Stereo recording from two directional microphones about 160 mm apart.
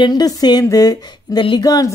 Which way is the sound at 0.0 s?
25° left (ahead or behind).